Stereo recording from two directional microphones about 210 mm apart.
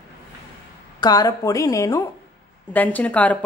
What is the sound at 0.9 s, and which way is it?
Speech, 20° left (ahead or behind).